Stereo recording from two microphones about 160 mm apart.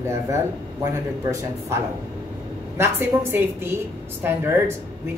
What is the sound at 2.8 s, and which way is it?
A man's voice, 15° right (ahead or behind).